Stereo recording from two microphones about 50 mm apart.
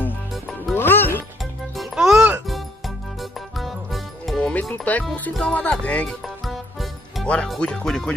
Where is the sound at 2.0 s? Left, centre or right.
Centre.